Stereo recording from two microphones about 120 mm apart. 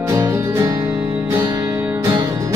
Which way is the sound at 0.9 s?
15° right (ahead or behind).